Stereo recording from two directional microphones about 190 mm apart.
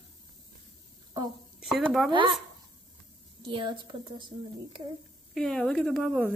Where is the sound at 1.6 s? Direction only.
Centre (ahead or behind).